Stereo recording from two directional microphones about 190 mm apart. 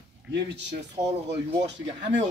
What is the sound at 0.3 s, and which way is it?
Speech, 65° right (ahead or behind).